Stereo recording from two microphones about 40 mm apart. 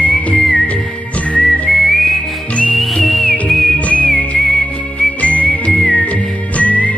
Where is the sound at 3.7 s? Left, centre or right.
Left.